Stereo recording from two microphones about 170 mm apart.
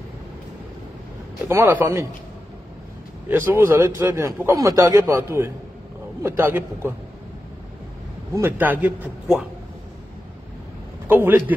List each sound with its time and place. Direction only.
1.5 s a man's voice: 15° right (ahead or behind)
3.3 s a man's voice: 15° right (ahead or behind)
8.4 s a man's voice: 10° right (ahead or behind)
11.1 s a man's voice: 10° right (ahead or behind)